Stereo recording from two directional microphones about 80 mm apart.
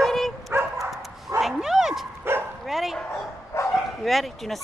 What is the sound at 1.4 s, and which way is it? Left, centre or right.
Bow-wow, centre.